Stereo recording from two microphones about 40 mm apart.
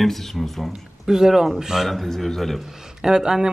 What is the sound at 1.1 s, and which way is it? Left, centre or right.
Speech, centre.